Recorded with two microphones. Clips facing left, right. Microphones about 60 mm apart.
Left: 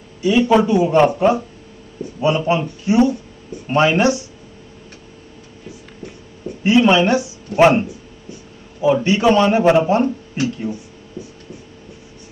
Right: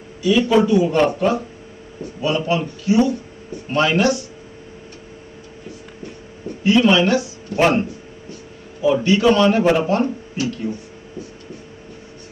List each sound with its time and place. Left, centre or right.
0.4 s speech: left
6.6 s speech: left
8.8 s speech: left